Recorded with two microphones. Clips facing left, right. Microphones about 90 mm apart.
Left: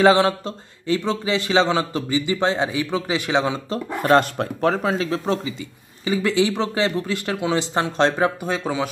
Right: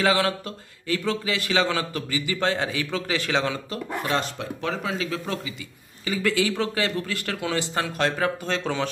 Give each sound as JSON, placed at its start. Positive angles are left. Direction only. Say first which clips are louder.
{"t": 0.0, "sound": "a man's voice", "louder": "left 7 dB", "side_deg": 25}
{"t": 4.1, "sound": "a man's voice", "louder": "left 12 dB", "side_deg": 50}
{"t": 8.5, "sound": "a man's voice", "louder": "left 3 dB", "side_deg": 10}